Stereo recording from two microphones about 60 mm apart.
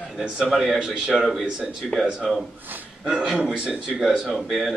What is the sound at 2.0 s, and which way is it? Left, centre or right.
Speech, centre.